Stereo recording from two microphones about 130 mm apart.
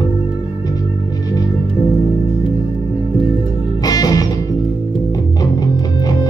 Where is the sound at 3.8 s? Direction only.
30° left (ahead or behind).